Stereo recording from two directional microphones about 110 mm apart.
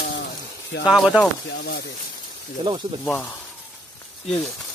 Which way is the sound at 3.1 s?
15° left (ahead or behind).